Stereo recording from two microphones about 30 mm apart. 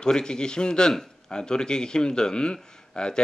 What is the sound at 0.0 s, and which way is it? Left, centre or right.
A man's voice, left.